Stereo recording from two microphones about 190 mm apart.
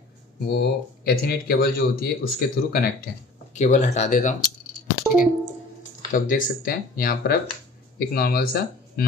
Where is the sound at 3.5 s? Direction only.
40° left (ahead or behind).